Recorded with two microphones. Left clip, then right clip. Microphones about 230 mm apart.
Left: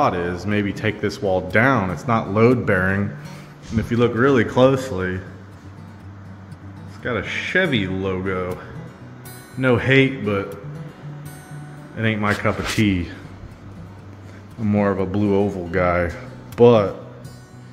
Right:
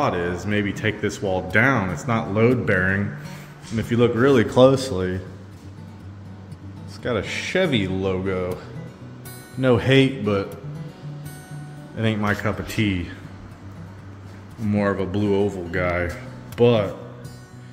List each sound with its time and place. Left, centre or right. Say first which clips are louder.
0.0 s speech: left 3 dB; centre
7.0 s speech: left 1 dB; centre
9.6 s speech: left 1 dB; centre
12.0 s speech: left 2 dB; centre
12.4 s speech: left 4 dB; centre
14.7 s speech: left 2 dB; centre